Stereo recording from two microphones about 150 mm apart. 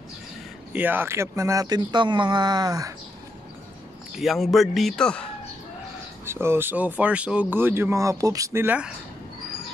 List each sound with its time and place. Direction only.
0.7 s speech: 10° right (ahead or behind)
4.2 s a man's voice: centre (ahead or behind)
6.2 s speech: 15° right (ahead or behind)